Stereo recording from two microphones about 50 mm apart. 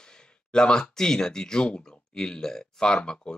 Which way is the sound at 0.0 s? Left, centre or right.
Centre.